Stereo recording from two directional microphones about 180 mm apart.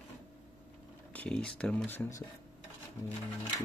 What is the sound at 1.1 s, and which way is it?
Speech, 5° left (ahead or behind).